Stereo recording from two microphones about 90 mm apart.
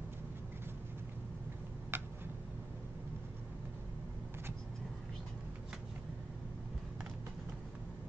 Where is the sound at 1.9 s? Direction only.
20° right (ahead or behind).